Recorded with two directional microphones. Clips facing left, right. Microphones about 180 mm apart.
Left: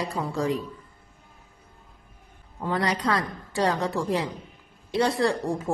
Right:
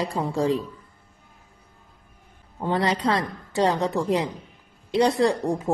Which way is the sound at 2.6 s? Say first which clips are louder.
Right 3 dB; 25° right (ahead or behind).